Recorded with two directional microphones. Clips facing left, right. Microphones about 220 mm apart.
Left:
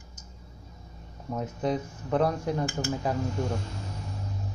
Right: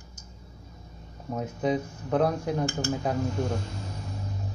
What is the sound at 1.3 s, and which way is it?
Speech, centre (ahead or behind).